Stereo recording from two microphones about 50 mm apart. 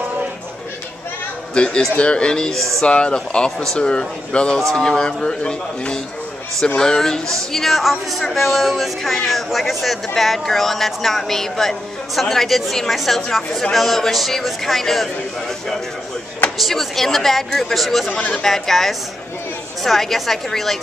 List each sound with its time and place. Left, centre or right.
1.5 s a man's voice: centre
16.5 s speech: centre